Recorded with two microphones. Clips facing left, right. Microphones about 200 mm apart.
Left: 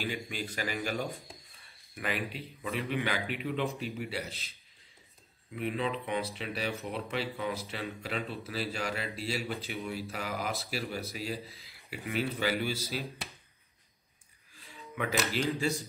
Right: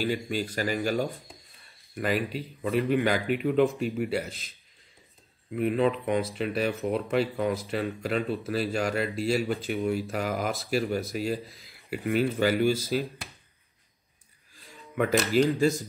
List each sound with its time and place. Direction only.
0.0 s speech: 40° right (ahead or behind)
5.6 s speech: 45° right (ahead or behind)
15.0 s speech: 50° right (ahead or behind)